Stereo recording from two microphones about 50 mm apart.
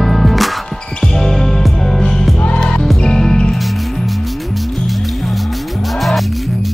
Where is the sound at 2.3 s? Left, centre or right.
Left.